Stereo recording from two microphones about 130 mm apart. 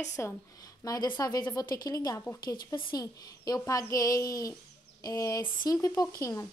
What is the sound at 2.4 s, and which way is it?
Speech, 35° left (ahead or behind).